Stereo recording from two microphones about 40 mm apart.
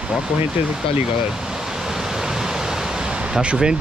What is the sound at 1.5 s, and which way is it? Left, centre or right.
Waves, centre.